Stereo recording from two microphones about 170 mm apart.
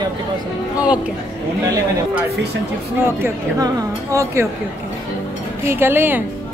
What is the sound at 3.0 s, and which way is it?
Speech, 15° right (ahead or behind).